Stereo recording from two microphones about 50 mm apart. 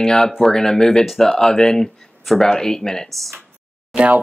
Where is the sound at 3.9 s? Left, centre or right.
Right.